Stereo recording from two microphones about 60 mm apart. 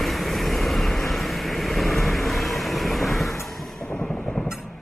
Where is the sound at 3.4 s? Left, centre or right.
Centre.